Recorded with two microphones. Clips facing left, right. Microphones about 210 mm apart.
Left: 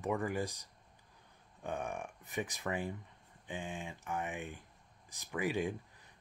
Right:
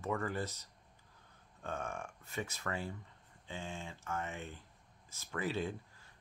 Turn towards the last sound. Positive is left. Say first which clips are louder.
# left 3 dB
turn(degrees=15)  # may be behind; listen again after turning